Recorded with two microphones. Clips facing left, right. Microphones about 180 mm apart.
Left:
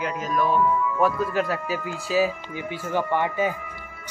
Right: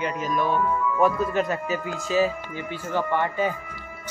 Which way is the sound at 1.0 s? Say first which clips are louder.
Right 3 dB; 5° left (ahead or behind).